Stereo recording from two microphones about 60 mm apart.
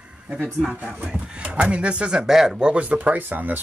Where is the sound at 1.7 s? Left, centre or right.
Centre.